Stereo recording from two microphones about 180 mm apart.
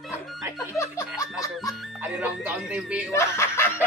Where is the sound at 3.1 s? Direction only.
15° left (ahead or behind).